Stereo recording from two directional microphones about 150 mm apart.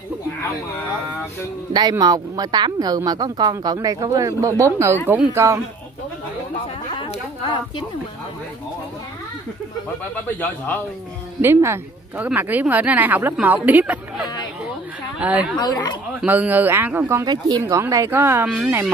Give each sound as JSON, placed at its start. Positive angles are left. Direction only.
{"t": 1.7, "sound": "a woman's voice", "side_deg": -30}
{"t": 7.0, "sound": "a sound", "side_deg": 35}
{"t": 11.4, "sound": "speech", "side_deg": -15}
{"t": 15.5, "sound": "speech", "side_deg": 30}
{"t": 16.2, "sound": "speech", "side_deg": -10}